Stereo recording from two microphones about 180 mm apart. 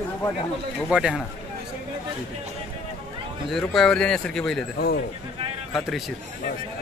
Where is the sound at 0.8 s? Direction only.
5° right (ahead or behind).